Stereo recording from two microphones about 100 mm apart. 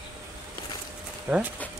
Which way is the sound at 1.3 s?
20° right (ahead or behind).